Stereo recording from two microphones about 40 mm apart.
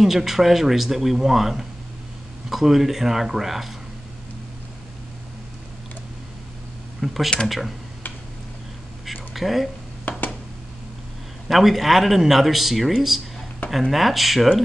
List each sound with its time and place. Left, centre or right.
0.0 s speech: centre
7.0 s speech: centre
7.4 s speech: centre
9.0 s a sound: centre
10.1 s a sound: left
11.4 s speech: centre